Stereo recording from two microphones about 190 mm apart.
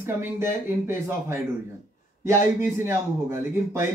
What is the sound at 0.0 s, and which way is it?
A man's voice, 10° right (ahead or behind).